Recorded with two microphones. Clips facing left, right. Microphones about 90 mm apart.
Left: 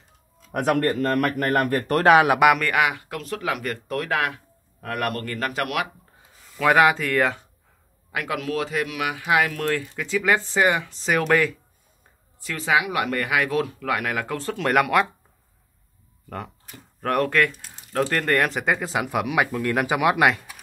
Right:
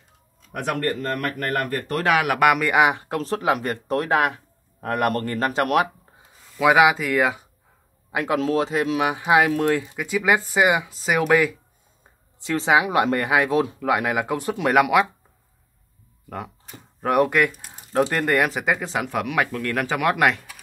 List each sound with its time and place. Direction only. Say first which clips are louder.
0.5 s speech: left 4 dB; 45° left (ahead or behind)
0.9 s a man's voice: left 4 dB; 65° left (ahead or behind)
1.7 s speech: left 4 dB; 55° left (ahead or behind)
2.0 s speech: left 5 dB; 25° left (ahead or behind)
2.6 s speech: right 4 dB; 20° right (ahead or behind)
6.6 s speech: right 1 dB; 5° right (ahead or behind)
8.1 s speech: right 5 dB; 25° right (ahead or behind); by 11.5 s 10° right (ahead or behind)
12.4 s speech: right 3 dB; 25° right (ahead or behind); by 15.0 s 5° right (ahead or behind)
16.3 s speech: right 1 dB; 5° right (ahead or behind)